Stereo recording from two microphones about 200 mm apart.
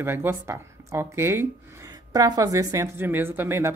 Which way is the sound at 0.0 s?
10° right (ahead or behind).